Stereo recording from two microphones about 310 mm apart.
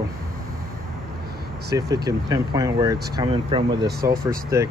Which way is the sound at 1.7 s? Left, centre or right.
Centre.